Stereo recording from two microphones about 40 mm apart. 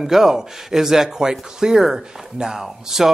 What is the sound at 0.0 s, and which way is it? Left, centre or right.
Speech, centre.